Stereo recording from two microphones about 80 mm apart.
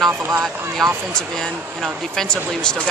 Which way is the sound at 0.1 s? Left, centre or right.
Right.